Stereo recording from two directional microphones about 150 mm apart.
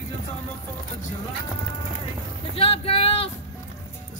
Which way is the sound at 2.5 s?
40° left (ahead or behind).